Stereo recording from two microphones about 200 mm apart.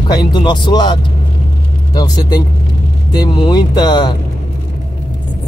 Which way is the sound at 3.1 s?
20° left (ahead or behind).